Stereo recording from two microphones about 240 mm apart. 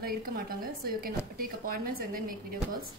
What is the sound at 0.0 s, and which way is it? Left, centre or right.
Speech, right.